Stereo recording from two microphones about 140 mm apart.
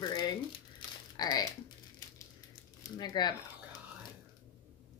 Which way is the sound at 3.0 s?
30° left (ahead or behind).